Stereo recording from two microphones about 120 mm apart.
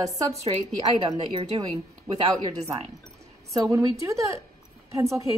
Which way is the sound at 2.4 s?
30° right (ahead or behind).